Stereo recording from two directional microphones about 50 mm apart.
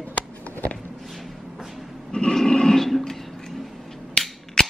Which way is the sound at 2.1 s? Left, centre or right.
Centre.